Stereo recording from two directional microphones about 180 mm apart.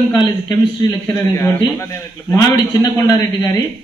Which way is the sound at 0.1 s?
25° left (ahead or behind).